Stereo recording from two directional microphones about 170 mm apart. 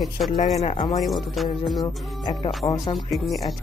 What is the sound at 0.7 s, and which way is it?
Speech, 25° left (ahead or behind).